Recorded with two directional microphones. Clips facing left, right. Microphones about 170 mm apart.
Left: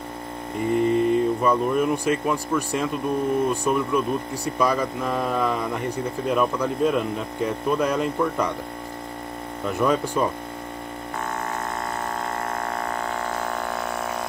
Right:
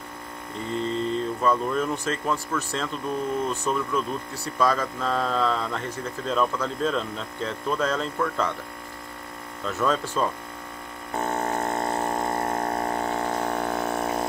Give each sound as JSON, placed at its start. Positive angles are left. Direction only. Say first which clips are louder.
{"t": 0.7, "sound": "speech", "louder": "left 7 dB", "side_deg": 15}
{"t": 9.7, "sound": "speech", "louder": "left 3 dB", "side_deg": 15}
{"t": 11.1, "sound": "a sound", "louder": "right 4 dB", "side_deg": -30}